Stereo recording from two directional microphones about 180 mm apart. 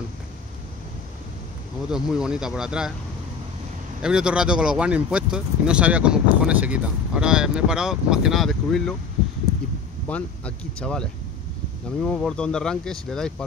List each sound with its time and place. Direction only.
1.9 s speech: 5° right (ahead or behind)
4.0 s speech: 5° right (ahead or behind)
10.0 s speech: 5° left (ahead or behind)
12.1 s speech: 5° left (ahead or behind)